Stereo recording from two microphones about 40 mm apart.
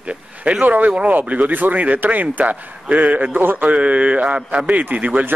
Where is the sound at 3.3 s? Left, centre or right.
Right.